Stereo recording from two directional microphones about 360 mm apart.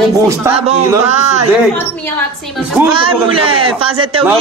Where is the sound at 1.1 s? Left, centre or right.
Centre.